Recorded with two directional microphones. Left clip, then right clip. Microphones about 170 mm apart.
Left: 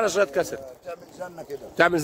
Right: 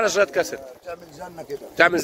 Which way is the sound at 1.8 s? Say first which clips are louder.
Right 3 dB; 35° left (ahead or behind).